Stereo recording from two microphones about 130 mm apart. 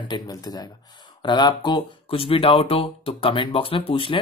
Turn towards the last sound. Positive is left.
turn(degrees=40)  # may be behind; listen again after turning